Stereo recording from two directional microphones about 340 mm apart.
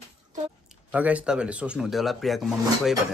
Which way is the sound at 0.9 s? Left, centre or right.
Centre.